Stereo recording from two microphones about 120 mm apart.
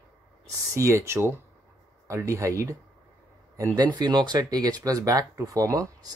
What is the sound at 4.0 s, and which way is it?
Speech, 35° right (ahead or behind).